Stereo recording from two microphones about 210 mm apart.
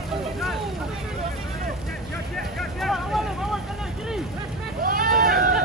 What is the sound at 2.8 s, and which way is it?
Vehicle, centre (ahead or behind).